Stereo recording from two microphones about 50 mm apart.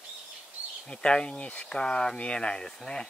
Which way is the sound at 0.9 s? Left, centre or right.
Centre.